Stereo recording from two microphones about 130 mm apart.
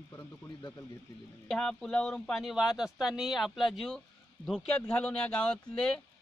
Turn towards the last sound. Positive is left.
turn(degrees=10)  # may be behind; listen again after turning